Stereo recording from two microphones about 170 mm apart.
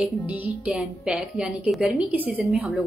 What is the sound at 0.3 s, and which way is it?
A woman's voice, 5° right (ahead or behind).